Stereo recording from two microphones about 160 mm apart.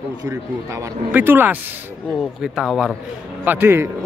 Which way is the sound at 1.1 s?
15° right (ahead or behind).